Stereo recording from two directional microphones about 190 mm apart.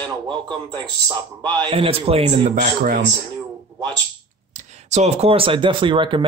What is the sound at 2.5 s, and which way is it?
Speech, 45° right (ahead or behind).